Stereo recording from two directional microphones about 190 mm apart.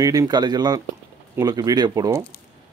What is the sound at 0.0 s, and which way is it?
Speech, 20° right (ahead or behind).